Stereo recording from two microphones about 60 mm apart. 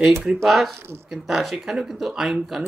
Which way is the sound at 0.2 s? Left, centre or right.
Centre.